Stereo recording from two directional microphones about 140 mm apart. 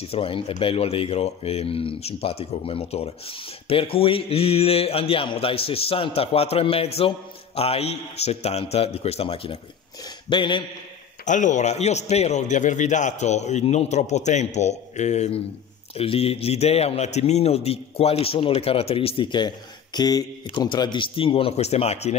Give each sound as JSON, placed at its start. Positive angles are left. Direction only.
{"t": 0.1, "sound": "speech", "side_deg": 40}
{"t": 11.2, "sound": "a man's voice", "side_deg": 60}